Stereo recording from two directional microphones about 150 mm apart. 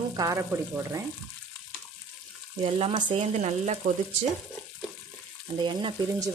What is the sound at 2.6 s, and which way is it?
Speech, 35° right (ahead or behind).